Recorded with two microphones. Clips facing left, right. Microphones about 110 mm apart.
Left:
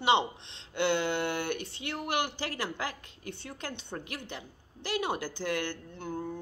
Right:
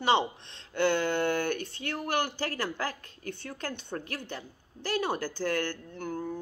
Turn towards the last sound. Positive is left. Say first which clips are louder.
# right 2 dB
turn(degrees=20)  # may be behind; listen again after turning